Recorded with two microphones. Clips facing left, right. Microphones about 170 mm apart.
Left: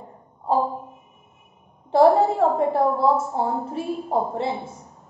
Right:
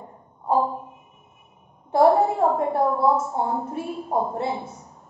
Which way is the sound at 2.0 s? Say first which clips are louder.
Left 1 dB; 30° left (ahead or behind).